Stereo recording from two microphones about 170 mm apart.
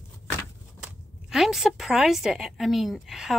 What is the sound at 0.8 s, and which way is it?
Speech, 5° right (ahead or behind).